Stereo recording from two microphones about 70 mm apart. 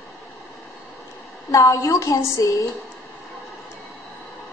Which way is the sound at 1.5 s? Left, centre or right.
Left.